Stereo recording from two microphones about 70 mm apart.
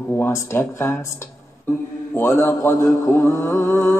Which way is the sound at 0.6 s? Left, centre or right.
Left.